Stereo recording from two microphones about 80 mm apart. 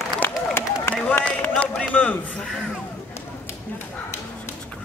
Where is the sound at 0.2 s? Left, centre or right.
Left.